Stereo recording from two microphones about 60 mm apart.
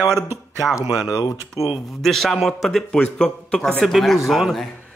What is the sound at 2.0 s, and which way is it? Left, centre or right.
Speech, centre.